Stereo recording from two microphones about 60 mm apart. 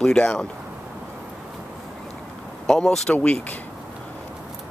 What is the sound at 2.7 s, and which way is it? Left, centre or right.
Speech, centre.